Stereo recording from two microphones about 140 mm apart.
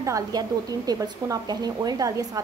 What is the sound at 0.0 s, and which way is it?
A woman's voice, 25° right (ahead or behind).